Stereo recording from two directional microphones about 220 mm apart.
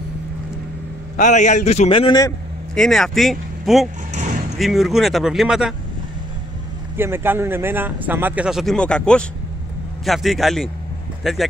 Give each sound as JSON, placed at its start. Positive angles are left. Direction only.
{"t": 1.1, "sound": "a man's voice", "side_deg": 35}
{"t": 2.7, "sound": "speech", "side_deg": 0}
{"t": 7.0, "sound": "speech", "side_deg": -10}